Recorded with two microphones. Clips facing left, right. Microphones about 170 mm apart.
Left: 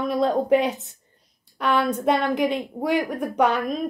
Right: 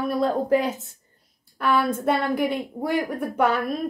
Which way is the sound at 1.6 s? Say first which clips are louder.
Even; 20° left (ahead or behind).